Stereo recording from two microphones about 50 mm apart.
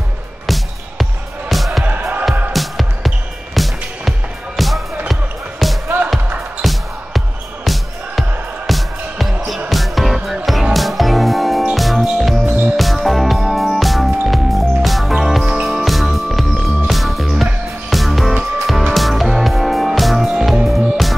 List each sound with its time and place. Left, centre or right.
1.5 s music: centre
1.9 s music: right
2.5 s music: centre